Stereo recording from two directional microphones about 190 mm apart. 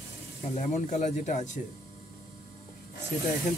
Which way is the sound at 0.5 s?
40° left (ahead or behind).